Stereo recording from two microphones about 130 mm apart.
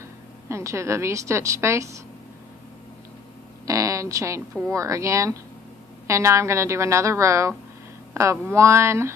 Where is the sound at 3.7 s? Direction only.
25° right (ahead or behind).